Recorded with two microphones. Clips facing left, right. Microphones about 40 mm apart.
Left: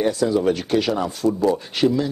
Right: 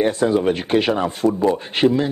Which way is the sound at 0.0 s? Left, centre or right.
Right.